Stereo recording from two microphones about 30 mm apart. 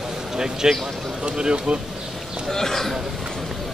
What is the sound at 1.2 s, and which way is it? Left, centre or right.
Speech, right.